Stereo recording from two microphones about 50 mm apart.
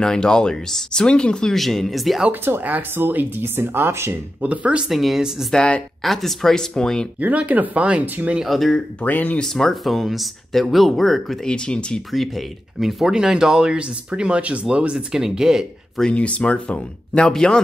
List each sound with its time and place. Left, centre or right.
0.0 s speech: centre
1.6 s speech: centre
2.5 s speech: right
4.4 s speech: right
4.8 s speech: centre
7.2 s speech: right
8.5 s speech: centre
9.0 s speech: left
9.4 s speech: centre
11.4 s speech: centre
12.1 s speech: centre
13.0 s speech: centre
16.1 s speech: left
17.3 s speech: centre